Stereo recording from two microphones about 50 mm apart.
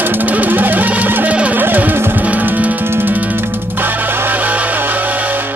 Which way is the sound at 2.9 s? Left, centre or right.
Right.